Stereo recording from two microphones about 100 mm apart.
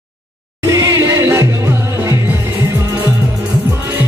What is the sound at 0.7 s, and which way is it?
Music, 30° right (ahead or behind).